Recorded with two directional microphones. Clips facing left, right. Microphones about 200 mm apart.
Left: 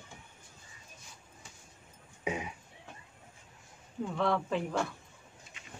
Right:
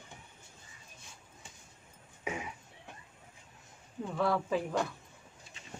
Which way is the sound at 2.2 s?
20° left (ahead or behind).